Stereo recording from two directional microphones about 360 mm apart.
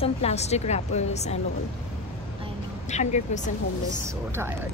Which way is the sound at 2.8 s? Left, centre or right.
Centre.